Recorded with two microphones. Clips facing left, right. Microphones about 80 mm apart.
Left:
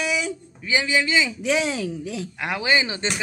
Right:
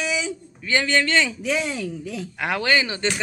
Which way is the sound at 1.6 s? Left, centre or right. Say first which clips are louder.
Left 2 dB; left.